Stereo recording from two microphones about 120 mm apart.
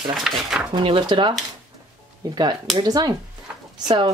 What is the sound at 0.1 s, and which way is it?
Speech, 5° right (ahead or behind).